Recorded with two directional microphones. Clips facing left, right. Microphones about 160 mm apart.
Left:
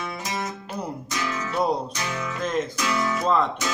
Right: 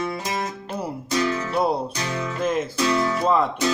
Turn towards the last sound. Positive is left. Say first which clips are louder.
# right 2 dB
turn(degrees=-10)  # may be behind; listen again after turning